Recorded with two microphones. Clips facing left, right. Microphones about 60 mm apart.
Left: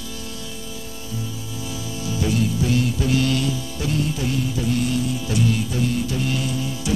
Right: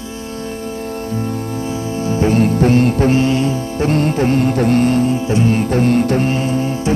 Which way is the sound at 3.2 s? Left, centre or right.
Right.